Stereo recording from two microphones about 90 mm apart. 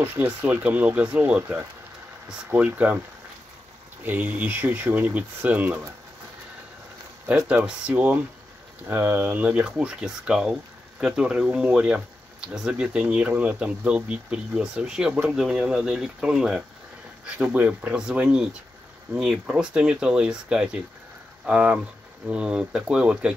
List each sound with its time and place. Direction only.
0.2 s speech: 20° right (ahead or behind)
4.0 s speech: 20° right (ahead or behind)
7.6 s speech: 10° right (ahead or behind)